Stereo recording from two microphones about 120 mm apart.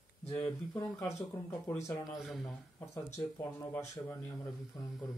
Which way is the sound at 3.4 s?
25° left (ahead or behind).